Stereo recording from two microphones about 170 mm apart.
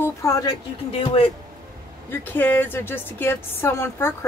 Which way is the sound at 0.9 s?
30° left (ahead or behind).